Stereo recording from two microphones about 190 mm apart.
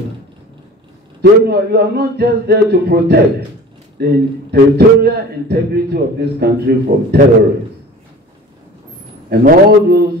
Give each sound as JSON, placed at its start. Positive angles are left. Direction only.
{"t": 1.2, "sound": "a man's voice", "side_deg": -55}
{"t": 9.3, "sound": "a man's voice", "side_deg": -55}